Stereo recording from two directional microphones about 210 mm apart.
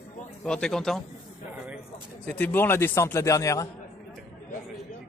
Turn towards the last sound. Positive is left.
turn(degrees=15)  # may be behind; listen again after turning